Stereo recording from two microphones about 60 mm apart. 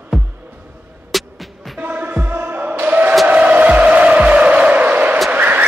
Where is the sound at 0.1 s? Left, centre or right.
Centre.